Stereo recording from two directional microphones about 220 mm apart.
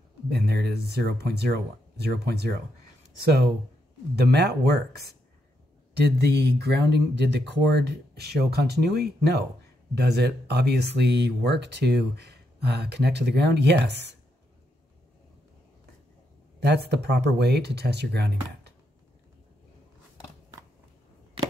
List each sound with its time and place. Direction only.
0.3 s speech: 50° right (ahead or behind)
16.5 s speech: 50° right (ahead or behind)